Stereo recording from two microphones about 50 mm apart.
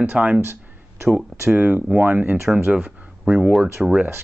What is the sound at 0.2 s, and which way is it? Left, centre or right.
Speech, right.